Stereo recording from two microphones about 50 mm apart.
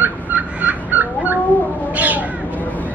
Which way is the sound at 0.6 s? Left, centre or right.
Right.